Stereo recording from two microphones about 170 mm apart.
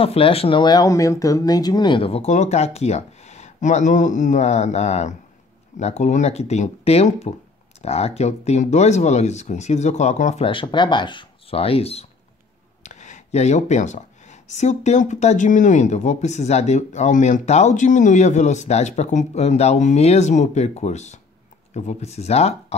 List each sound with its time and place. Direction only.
0.0 s speech: 35° left (ahead or behind)
10.4 s speech: 30° left (ahead or behind)